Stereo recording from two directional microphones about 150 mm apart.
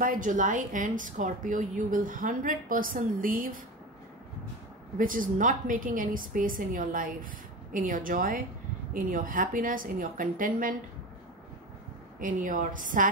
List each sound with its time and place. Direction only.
0.0 s a woman's voice: 65° right (ahead or behind)
4.9 s a woman's voice: 65° right (ahead or behind)
12.2 s a woman's voice: 60° right (ahead or behind)